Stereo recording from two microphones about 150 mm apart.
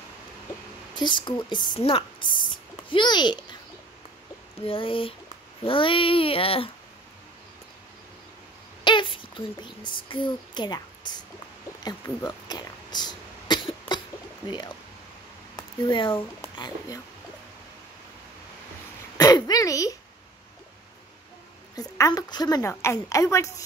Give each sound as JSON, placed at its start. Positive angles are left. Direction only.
{"t": 0.9, "sound": "child singing", "side_deg": 30}
{"t": 1.8, "sound": "a sound", "side_deg": 40}
{"t": 4.6, "sound": "child singing", "side_deg": 35}
{"t": 8.8, "sound": "speech", "side_deg": 35}
{"t": 11.8, "sound": "throat clearing", "side_deg": 25}
{"t": 14.5, "sound": "child singing", "side_deg": 30}
{"t": 15.9, "sound": "child singing", "side_deg": 35}
{"t": 16.5, "sound": "a woman's voice", "side_deg": 30}
{"t": 19.1, "sound": "a sound", "side_deg": 25}
{"t": 21.7, "sound": "a woman's voice", "side_deg": 20}